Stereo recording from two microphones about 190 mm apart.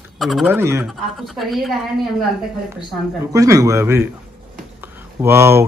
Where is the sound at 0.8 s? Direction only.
Centre (ahead or behind).